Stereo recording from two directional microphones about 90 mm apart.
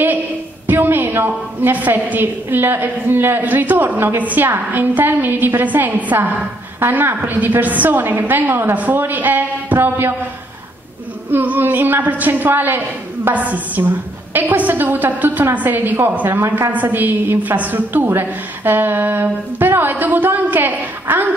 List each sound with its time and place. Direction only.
0.7 s a woman's voice: 20° right (ahead or behind)
11.3 s a woman's voice: 20° right (ahead or behind)